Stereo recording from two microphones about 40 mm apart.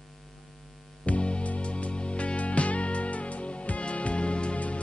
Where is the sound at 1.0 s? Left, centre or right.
Left.